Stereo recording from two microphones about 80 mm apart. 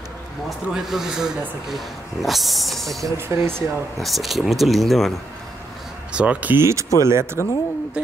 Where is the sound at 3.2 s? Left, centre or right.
Right.